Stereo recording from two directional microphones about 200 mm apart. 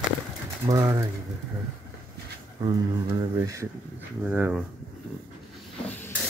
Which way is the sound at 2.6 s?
20° right (ahead or behind).